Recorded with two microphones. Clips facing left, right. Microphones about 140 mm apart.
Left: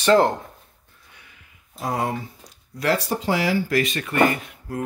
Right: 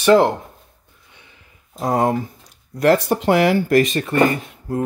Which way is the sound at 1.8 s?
45° right (ahead or behind).